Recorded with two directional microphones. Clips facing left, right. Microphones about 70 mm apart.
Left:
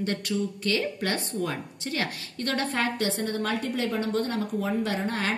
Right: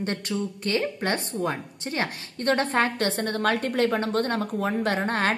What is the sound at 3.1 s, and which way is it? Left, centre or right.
A woman's voice, right.